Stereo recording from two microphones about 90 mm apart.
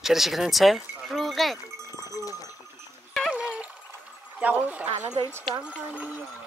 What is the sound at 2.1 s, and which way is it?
Goat, 40° left (ahead or behind).